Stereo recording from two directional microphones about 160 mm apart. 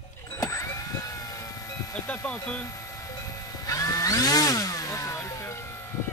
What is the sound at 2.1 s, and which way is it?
Music, 10° left (ahead or behind).